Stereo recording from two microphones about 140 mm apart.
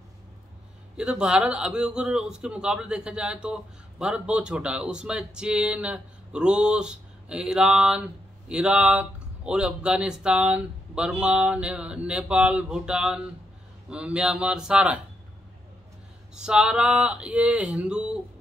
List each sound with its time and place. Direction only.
0.9 s a man's voice: 5° right (ahead or behind)
16.3 s a man's voice: 5° right (ahead or behind)